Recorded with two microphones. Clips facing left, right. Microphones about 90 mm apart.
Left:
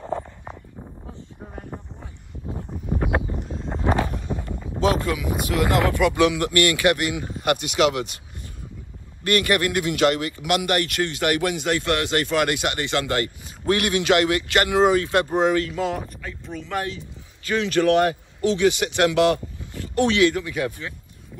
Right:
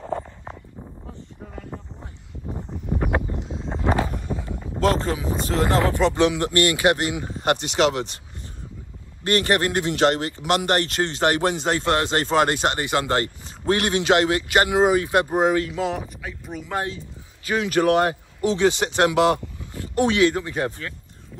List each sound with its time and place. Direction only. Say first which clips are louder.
0.0 s a sound: even; centre (ahead or behind)
4.9 s speech: even; 30° right (ahead or behind)
9.2 s speech: even; 30° right (ahead or behind)
13.1 s speech: right 1 dB; 30° right (ahead or behind)
15.7 s speech: even; 5° right (ahead or behind); by 20.5 s 25° right (ahead or behind)